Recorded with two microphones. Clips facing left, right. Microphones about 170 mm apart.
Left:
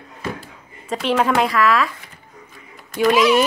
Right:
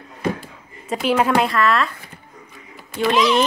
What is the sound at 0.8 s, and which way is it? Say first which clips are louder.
Speech: even; 5° right (ahead or behind).